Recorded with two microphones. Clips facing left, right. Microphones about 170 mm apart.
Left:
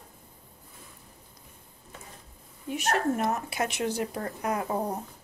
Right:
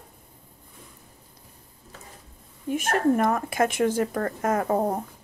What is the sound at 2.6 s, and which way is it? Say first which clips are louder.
Speech: right 5 dB; 50° right (ahead or behind).